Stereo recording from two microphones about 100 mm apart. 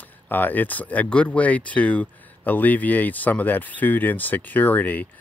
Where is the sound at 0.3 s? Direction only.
20° left (ahead or behind).